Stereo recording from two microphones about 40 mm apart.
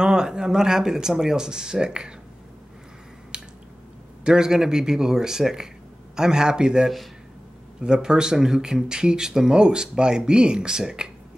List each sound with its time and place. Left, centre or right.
0.0 s speech: centre
3.3 s drip: right
4.2 s speech: centre